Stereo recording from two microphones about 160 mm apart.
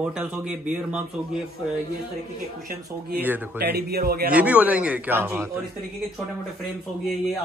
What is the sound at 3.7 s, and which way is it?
Speech, 70° right (ahead or behind).